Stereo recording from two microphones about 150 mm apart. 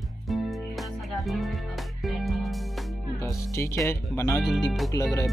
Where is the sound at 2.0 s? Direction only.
Centre (ahead or behind).